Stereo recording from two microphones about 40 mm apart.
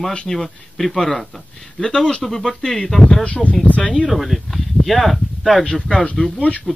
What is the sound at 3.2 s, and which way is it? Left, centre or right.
Speech, left.